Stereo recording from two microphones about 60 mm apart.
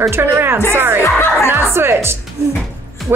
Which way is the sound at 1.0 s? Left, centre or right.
Left.